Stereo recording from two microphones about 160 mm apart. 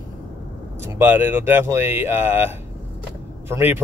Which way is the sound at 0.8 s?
15° right (ahead or behind).